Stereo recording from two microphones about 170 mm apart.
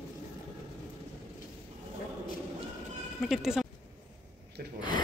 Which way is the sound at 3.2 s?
Centre (ahead or behind).